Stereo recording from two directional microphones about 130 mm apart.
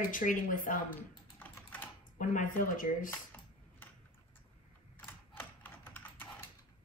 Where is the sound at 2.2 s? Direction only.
85° left.